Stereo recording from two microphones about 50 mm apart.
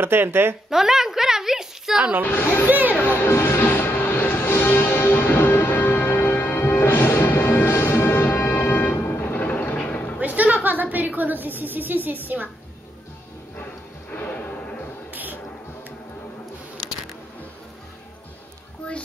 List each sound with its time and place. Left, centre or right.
0.0 s a woman's voice: right
0.7 s a sound: centre
2.2 s speech: left
2.6 s a woman's voice: right
2.9 s music: left
3.3 s music: left
10.2 s a woman's voice: right
14.1 s music: left